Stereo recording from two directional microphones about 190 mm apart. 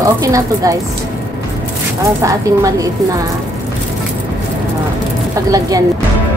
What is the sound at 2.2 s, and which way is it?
A woman's voice, 15° right (ahead or behind).